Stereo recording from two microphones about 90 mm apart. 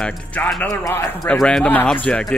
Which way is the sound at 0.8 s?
30° left (ahead or behind).